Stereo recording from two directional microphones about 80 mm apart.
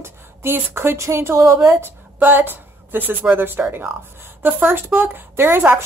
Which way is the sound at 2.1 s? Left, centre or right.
Right.